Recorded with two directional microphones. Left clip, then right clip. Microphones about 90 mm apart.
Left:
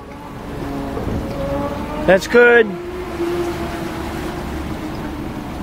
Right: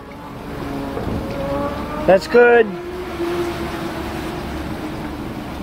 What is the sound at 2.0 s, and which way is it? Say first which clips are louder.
Speech: left 1 dB; 20° left (ahead or behind).